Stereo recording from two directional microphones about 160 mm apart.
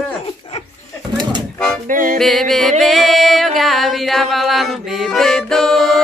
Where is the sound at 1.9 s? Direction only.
60° right (ahead or behind).